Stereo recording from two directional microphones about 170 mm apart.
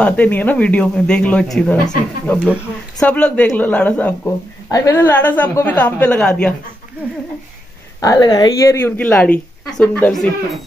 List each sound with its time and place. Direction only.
0.0 s a woman's voice: 10° left (ahead or behind)
4.6 s a woman's voice: 20° left (ahead or behind)
8.0 s a woman's voice: 20° left (ahead or behind)